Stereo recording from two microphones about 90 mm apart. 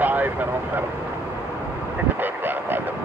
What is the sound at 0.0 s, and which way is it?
Vehicle, 20° right (ahead or behind).